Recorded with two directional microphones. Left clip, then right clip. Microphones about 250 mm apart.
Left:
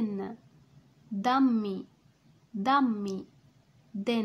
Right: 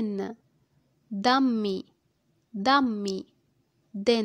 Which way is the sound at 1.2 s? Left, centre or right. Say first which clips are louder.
Right 3 dB; right.